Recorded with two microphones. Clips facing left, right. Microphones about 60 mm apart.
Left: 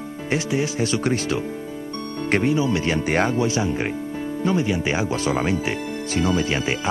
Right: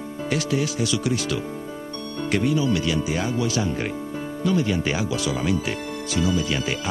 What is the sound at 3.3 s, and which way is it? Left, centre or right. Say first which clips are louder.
Speech: left 2 dB; left.